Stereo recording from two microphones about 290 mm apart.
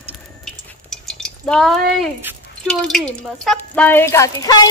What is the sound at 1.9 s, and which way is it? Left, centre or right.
Speech, centre.